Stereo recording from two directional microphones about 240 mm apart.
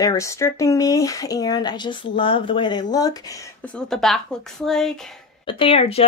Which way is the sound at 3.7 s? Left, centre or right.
Centre.